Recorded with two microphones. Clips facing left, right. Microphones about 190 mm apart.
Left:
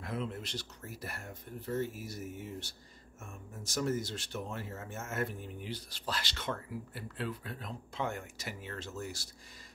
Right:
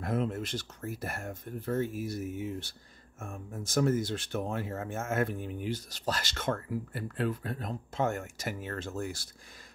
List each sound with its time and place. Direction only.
0.0 s speech: 45° right (ahead or behind)